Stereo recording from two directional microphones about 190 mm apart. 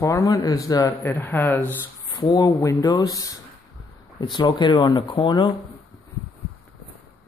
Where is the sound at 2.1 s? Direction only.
20° left (ahead or behind).